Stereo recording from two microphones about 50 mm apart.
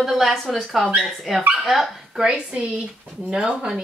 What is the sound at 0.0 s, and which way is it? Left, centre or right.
Speech, centre.